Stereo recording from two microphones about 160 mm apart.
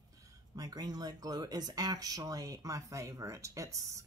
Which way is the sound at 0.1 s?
20° right (ahead or behind).